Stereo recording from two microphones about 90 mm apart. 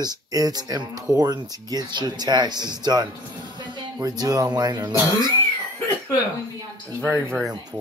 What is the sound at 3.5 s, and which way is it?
Music, 60° right (ahead or behind).